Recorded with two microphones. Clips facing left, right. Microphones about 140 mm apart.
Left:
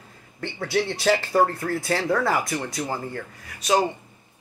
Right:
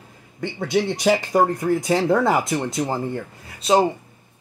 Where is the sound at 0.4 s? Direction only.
20° right (ahead or behind).